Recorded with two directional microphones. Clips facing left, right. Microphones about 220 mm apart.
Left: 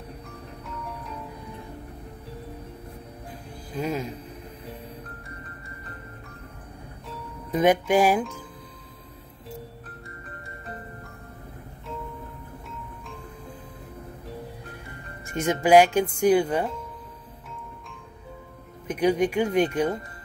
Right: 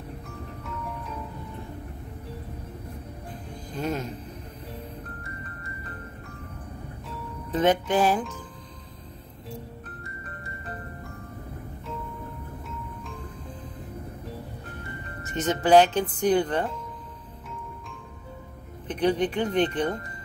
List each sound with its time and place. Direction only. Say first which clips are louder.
3.7 s music: left 1 dB; 5° left (ahead or behind)
7.5 s speech: left 2 dB; 10° left (ahead or behind)
15.2 s speech: left 1 dB; 10° left (ahead or behind)
18.9 s speech: left 2 dB; 10° left (ahead or behind)